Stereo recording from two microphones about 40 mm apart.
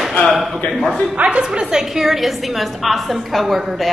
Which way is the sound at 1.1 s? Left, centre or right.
Right.